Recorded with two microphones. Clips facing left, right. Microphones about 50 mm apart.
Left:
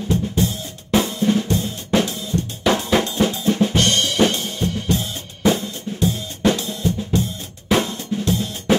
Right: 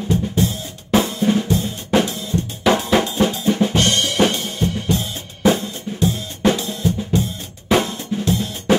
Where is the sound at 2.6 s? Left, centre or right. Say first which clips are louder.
Right 2 dB; centre.